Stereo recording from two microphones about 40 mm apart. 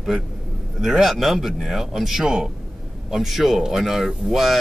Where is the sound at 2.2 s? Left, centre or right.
Centre.